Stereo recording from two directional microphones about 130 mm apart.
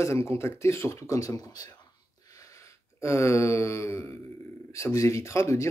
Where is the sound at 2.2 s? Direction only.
25° left (ahead or behind).